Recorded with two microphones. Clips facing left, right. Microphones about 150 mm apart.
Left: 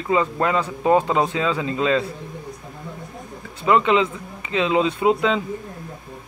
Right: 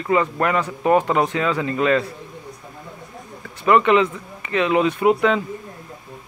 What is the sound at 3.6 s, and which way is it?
Speech, 15° left (ahead or behind).